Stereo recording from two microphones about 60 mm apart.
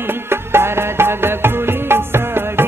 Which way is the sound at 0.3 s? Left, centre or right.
Right.